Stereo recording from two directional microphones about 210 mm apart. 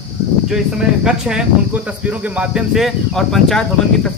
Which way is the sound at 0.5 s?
5° right (ahead or behind).